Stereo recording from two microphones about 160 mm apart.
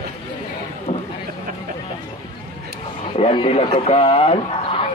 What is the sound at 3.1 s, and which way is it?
A man's voice, 35° left (ahead or behind).